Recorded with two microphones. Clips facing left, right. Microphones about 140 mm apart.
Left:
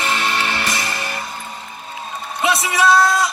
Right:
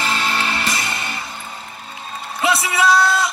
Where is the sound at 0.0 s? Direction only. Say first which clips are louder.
Left 1 dB; 30° right (ahead or behind).